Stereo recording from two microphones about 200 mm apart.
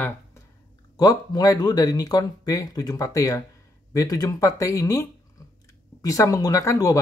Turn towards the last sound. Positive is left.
turn(degrees=15)  # may be behind; listen again after turning